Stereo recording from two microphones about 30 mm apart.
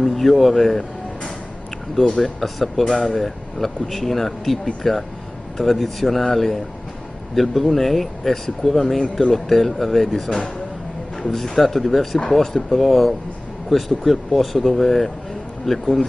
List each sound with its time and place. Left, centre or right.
0.0 s speech: centre
2.0 s speech: left
2.2 s speech: centre
8.6 s speech: left
9.3 s speech: centre